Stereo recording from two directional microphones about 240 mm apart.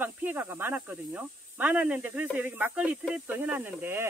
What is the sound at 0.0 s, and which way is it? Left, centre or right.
Speech, centre.